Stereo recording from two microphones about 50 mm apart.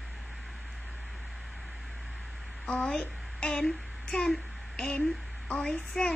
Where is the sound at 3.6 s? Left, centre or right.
Centre.